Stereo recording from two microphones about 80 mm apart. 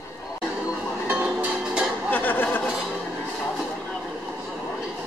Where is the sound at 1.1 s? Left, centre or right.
Centre.